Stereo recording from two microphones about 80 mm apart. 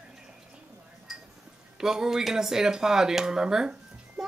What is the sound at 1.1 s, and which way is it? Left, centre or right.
Tick-tock, centre.